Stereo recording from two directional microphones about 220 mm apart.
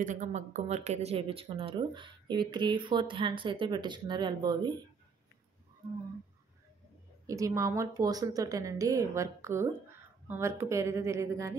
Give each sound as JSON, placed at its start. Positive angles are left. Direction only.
{"t": 0.0, "sound": "speech", "side_deg": -35}
{"t": 7.2, "sound": "a woman's voice", "side_deg": -15}